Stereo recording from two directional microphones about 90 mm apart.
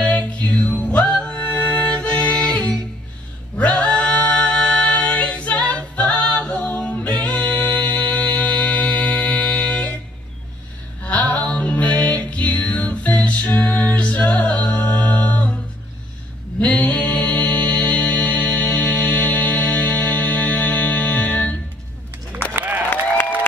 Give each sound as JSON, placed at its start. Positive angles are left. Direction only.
{"t": 0.0, "sound": "music", "side_deg": 15}
{"t": 11.1, "sound": "music", "side_deg": 15}
{"t": 16.5, "sound": "music", "side_deg": 15}
{"t": 22.6, "sound": "applause", "side_deg": -20}